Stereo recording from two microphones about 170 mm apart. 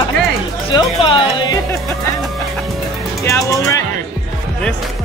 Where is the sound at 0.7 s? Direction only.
30° left (ahead or behind).